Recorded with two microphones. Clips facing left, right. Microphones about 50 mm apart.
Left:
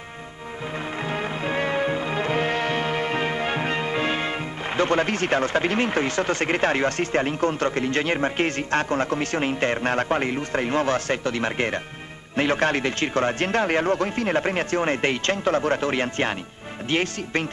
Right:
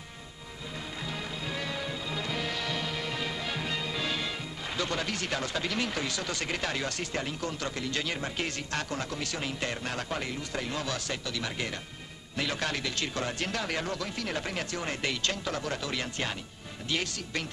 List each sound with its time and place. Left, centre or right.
1.0 s music: left
4.7 s speech: left